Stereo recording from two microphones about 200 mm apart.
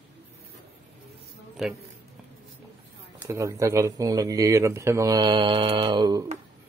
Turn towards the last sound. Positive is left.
turn(degrees=-20)  # may be behind; listen again after turning